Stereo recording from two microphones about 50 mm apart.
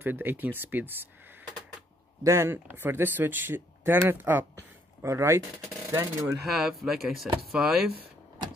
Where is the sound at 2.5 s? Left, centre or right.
Right.